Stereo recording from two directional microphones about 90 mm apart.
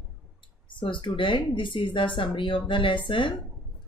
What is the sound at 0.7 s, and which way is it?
Speech, 65° left (ahead or behind).